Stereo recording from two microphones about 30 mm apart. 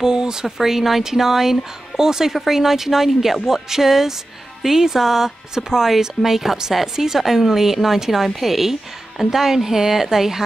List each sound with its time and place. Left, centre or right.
0.0 s speech: right